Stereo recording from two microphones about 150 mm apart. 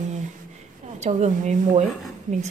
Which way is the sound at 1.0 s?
50° right (ahead or behind).